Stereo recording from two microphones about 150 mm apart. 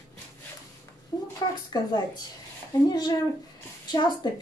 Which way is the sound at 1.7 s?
25° left (ahead or behind).